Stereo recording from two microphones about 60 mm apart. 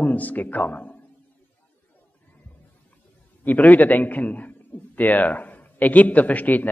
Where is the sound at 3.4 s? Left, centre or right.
Left.